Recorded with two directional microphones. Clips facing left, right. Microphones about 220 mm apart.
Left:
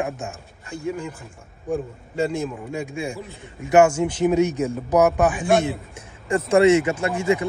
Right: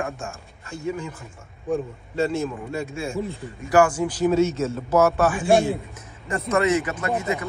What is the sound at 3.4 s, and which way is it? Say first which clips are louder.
Speech: left 3 dB; 25° left (ahead or behind).